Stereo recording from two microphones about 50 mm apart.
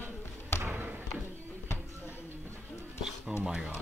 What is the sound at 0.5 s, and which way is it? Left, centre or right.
Basketball bounce, left.